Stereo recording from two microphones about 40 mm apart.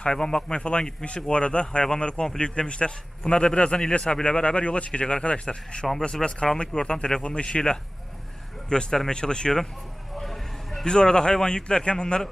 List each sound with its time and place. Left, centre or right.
0.0 s speech: left
10.1 s vehicle: centre
10.9 s speech: centre